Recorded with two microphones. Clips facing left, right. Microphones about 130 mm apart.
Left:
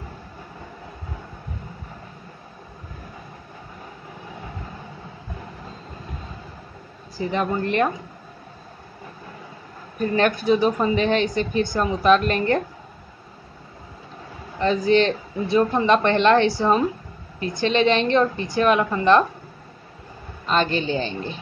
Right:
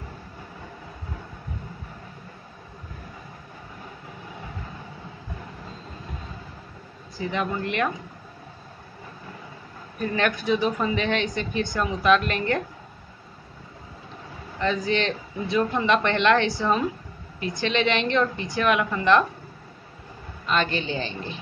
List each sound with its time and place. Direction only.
7.2 s a woman's voice: 35° left (ahead or behind)
10.1 s a woman's voice: 35° left (ahead or behind)
14.6 s a woman's voice: 35° left (ahead or behind)
20.4 s a woman's voice: 35° left (ahead or behind)